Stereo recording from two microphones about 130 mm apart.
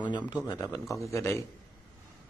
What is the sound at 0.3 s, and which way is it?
A man's voice, 25° left (ahead or behind).